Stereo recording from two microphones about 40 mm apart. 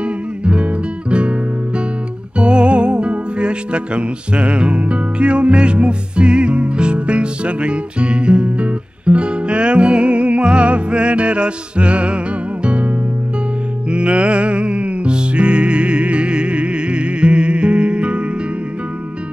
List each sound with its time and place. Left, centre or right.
0.0 s music: right